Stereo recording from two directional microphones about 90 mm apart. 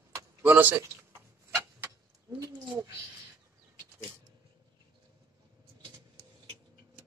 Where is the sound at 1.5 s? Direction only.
25° right (ahead or behind).